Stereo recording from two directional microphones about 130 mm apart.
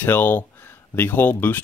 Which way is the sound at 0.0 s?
15° left (ahead or behind).